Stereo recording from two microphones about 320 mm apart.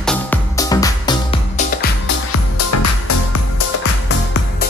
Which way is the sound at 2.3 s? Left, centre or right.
Left.